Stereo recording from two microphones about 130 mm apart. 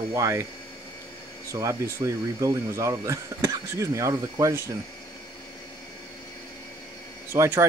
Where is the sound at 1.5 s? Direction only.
25° right (ahead or behind).